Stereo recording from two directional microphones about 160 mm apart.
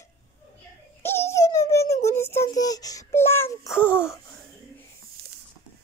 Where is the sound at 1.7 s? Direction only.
20° left (ahead or behind).